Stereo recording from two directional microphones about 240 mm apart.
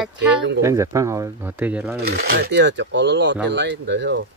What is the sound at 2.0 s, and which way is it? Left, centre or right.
Speech, right.